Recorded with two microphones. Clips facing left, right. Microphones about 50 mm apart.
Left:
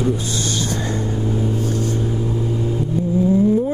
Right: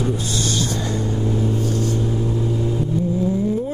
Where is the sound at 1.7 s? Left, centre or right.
Left.